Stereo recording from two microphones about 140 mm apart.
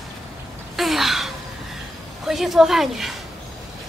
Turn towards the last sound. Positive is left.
turn(degrees=0)  # may be behind; listen again after turning